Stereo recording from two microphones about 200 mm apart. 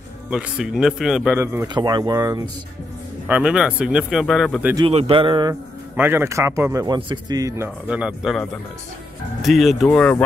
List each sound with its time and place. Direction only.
0.3 s speech: 5° right (ahead or behind)
3.3 s speech: 5° right (ahead or behind)
4.7 s a man's voice: 30° right (ahead or behind)
5.9 s speech: 10° right (ahead or behind); by 10.2 s 5° left (ahead or behind)